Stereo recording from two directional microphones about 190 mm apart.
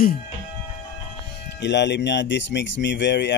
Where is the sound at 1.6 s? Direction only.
65° left (ahead or behind).